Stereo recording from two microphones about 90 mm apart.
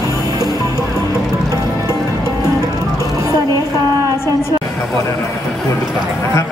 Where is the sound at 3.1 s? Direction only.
40° right (ahead or behind).